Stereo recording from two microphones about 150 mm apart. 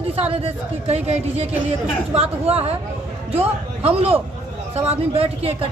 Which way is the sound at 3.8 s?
40° right (ahead or behind).